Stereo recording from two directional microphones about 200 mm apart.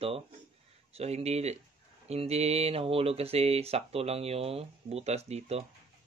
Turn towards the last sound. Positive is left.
turn(degrees=-30)  # may be behind; listen again after turning